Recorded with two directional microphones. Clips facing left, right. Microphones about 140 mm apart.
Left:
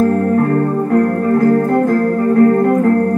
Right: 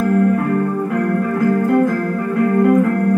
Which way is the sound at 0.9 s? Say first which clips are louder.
Left 7 dB; 40° left (ahead or behind).